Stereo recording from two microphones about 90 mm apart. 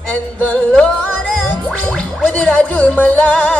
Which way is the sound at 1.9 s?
10° left (ahead or behind).